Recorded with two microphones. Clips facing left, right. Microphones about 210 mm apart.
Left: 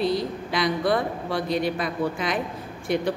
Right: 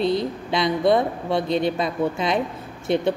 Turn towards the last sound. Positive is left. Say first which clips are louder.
# right 3 dB
turn(degrees=-25)  # may be behind; listen again after turning